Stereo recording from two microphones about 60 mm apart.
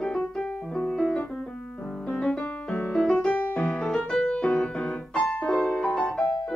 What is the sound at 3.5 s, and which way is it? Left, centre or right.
Music, centre.